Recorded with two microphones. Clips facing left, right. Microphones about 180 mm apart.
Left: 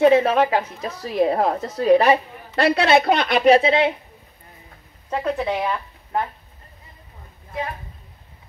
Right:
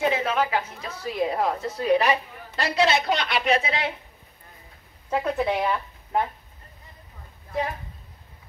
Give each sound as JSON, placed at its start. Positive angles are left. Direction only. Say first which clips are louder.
{"t": 0.1, "sound": "a woman's voice", "louder": "left 8 dB", "side_deg": 35}
{"t": 2.5, "sound": "a woman's voice", "louder": "left 6 dB", "side_deg": 60}
{"t": 5.1, "sound": "speech", "louder": "left 1 dB", "side_deg": -5}